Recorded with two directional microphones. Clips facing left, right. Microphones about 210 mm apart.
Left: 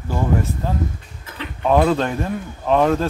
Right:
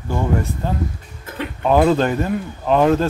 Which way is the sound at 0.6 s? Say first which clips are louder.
Even; centre (ahead or behind).